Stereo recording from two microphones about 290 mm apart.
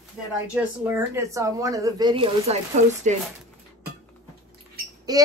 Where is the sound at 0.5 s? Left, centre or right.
Centre; by 2.9 s right.